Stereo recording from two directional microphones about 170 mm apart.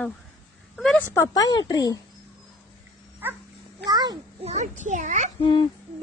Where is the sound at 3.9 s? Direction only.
25° right (ahead or behind).